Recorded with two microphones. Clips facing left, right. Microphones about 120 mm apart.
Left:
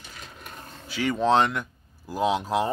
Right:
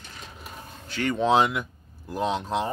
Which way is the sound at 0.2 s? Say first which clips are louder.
Right 1 dB; 5° right (ahead or behind).